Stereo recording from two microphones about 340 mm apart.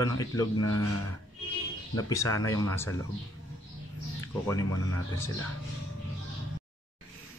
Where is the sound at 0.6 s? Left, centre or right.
Left.